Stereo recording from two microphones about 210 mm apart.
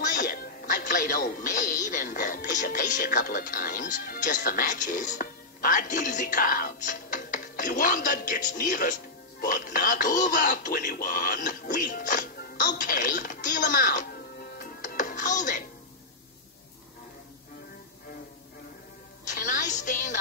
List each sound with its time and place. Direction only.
0.1 s music: 45° left (ahead or behind)
1.9 s speech: 40° left (ahead or behind)
19.2 s music: 40° left (ahead or behind)